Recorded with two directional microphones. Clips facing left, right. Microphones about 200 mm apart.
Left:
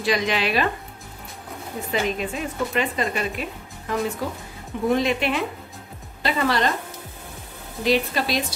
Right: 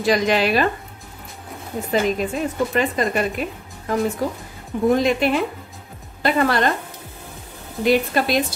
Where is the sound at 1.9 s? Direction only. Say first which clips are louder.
Right 5 dB; 40° right (ahead or behind).